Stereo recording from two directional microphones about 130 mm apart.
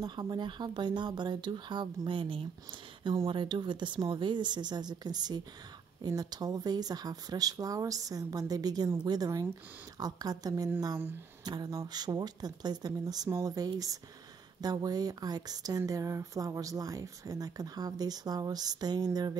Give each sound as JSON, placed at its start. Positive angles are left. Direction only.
{"t": 0.0, "sound": "speech", "side_deg": -35}